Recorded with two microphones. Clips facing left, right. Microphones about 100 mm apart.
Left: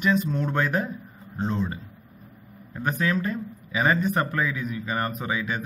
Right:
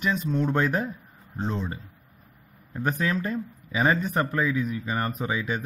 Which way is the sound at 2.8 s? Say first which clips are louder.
Left 1 dB; 30° right (ahead or behind).